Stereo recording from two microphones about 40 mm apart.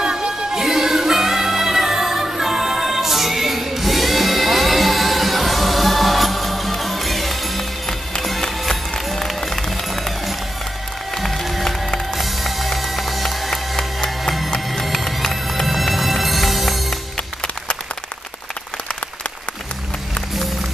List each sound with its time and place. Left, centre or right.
0.0 s music: right
0.6 s music: centre
11.1 s music: centre